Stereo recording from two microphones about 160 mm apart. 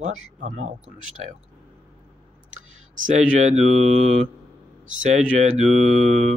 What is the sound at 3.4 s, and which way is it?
Mantra, 45° right (ahead or behind).